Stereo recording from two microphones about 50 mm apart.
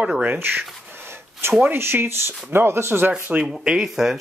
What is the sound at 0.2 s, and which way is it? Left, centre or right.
Speech, right.